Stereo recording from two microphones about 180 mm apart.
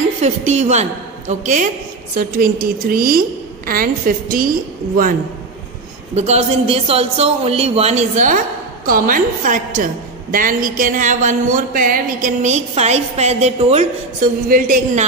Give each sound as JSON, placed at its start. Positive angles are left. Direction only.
{"t": 0.2, "sound": "a woman's voice", "side_deg": -40}
{"t": 6.1, "sound": "a woman's voice", "side_deg": -35}